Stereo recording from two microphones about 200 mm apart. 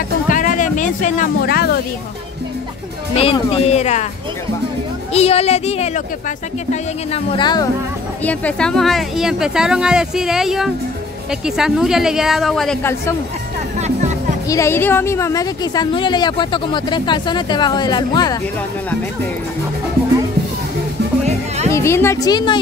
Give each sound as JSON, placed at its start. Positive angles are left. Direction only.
{"t": 0.3, "sound": "speech", "side_deg": 40}
{"t": 3.2, "sound": "speech", "side_deg": 30}
{"t": 5.1, "sound": "speech", "side_deg": 30}
{"t": 8.2, "sound": "speech", "side_deg": 5}
{"t": 13.7, "sound": "music", "side_deg": -35}
{"t": 14.5, "sound": "speech", "side_deg": 15}
{"t": 21.7, "sound": "a woman's voice", "side_deg": 15}